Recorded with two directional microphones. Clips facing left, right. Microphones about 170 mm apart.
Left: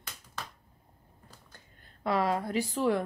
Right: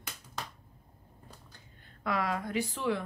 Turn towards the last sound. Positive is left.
turn(degrees=40)  # may be behind; listen again after turning